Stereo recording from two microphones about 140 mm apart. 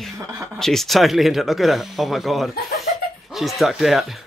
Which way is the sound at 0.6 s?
Centre (ahead or behind).